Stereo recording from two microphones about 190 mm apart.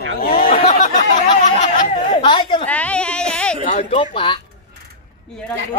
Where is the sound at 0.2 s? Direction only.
50° left (ahead or behind).